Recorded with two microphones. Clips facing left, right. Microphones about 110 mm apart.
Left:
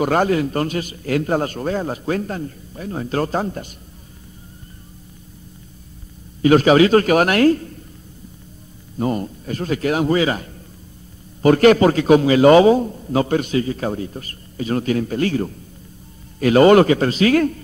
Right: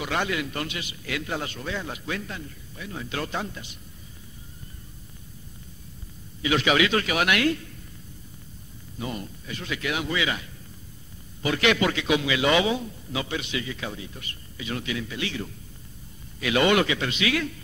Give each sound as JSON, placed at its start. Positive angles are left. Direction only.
{"t": 0.0, "sound": "a man's voice", "side_deg": 45}
{"t": 6.4, "sound": "a man's voice", "side_deg": 40}
{"t": 8.9, "sound": "a man's voice", "side_deg": 45}